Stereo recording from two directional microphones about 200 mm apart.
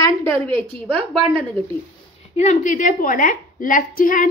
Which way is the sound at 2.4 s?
35° left (ahead or behind).